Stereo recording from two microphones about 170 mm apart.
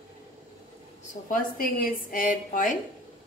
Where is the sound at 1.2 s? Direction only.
55° left (ahead or behind).